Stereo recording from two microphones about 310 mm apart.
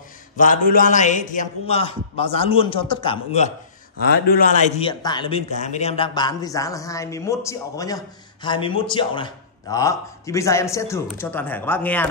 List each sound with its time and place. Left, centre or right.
0.4 s a man's voice: left; by 12.1 s centre